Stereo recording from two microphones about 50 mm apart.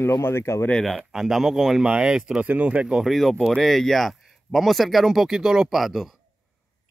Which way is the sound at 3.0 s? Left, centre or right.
Centre.